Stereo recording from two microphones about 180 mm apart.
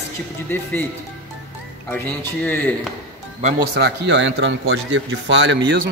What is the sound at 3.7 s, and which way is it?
A man's voice, 70° right (ahead or behind).